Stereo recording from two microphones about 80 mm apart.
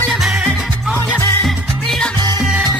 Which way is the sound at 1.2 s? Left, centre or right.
Left.